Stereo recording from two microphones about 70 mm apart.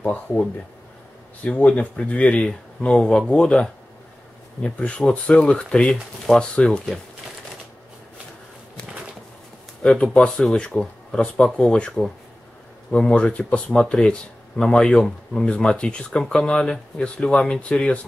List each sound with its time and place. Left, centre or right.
0.0 s speech: left
9.8 s speech: centre